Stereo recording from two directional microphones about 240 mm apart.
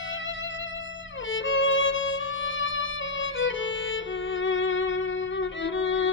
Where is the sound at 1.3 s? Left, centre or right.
Left.